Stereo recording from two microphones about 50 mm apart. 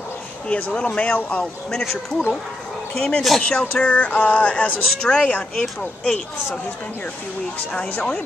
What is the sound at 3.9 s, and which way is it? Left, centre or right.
Speech, left.